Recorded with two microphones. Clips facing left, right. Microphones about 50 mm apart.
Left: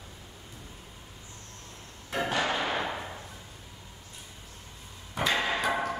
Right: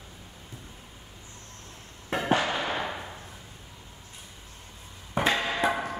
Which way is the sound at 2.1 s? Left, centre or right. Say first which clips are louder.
Right 1 dB; right.